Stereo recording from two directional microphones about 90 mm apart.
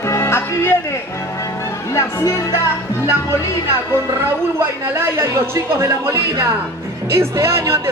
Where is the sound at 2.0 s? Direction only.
35° left (ahead or behind).